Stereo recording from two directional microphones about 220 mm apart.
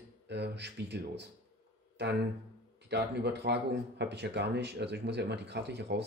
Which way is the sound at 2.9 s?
50° right (ahead or behind).